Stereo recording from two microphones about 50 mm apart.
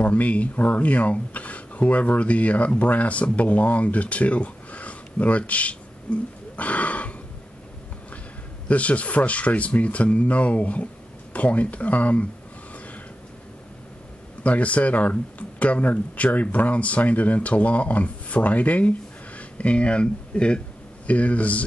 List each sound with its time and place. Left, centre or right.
0.0 s speech: left
8.6 s speech: left
14.4 s speech: left